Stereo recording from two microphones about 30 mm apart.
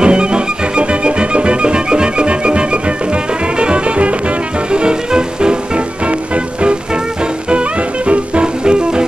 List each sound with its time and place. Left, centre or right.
0.0 s music: right
4.7 s music: right
8.6 s music: right